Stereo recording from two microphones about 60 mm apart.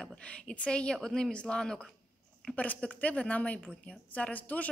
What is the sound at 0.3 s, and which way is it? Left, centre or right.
Speech, centre.